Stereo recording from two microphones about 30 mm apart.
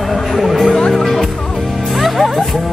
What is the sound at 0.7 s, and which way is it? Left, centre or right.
Speech, left.